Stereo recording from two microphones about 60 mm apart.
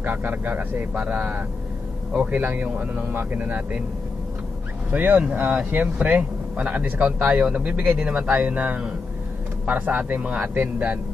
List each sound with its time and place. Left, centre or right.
0.0 s speech: right
4.9 s speech: right